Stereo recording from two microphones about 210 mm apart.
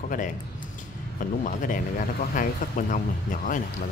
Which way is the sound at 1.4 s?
40° left (ahead or behind).